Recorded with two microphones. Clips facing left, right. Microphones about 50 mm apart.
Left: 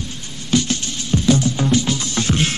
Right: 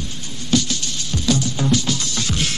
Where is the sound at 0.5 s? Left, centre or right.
Left.